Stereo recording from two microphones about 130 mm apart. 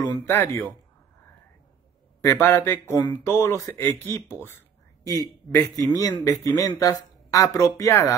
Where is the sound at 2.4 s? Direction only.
20° left (ahead or behind).